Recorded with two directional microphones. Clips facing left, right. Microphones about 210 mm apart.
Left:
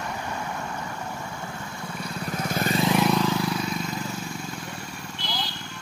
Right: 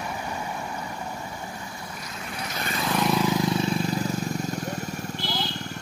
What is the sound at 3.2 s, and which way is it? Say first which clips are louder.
Vehicle: right 2 dB; 20° right (ahead or behind).